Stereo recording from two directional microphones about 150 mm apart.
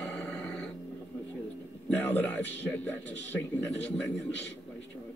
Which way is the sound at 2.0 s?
10° left (ahead or behind).